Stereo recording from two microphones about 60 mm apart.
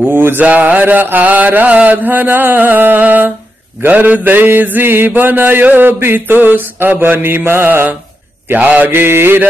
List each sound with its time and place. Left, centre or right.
0.1 s a sound: right
0.4 s mantra: right
8.5 s mantra: right